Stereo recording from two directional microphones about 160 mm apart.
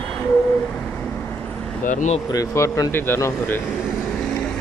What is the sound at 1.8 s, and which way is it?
Speech, 50° left (ahead or behind).